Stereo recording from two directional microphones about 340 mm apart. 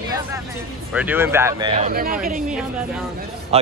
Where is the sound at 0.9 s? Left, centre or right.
Centre.